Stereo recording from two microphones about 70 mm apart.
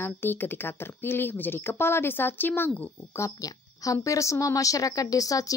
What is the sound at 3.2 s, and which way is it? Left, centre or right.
Speech, left.